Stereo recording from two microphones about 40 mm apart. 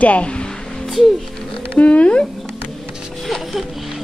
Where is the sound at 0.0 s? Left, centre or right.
Left.